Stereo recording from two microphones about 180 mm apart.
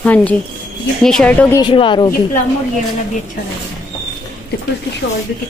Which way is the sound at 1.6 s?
25° left (ahead or behind).